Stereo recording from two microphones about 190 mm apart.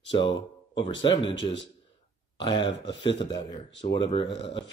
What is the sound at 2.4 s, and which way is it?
Speech, 25° left (ahead or behind).